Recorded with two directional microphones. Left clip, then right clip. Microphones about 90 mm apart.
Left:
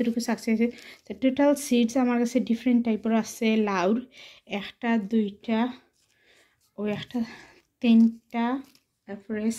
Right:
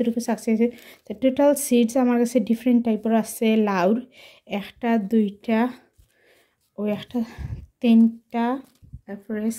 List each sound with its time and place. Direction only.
0.0 s speech: 35° right (ahead or behind); by 5.9 s 90° right
6.8 s speech: 40° right (ahead or behind); by 8.6 s 60° right (ahead or behind)
9.0 s speech: 45° right (ahead or behind)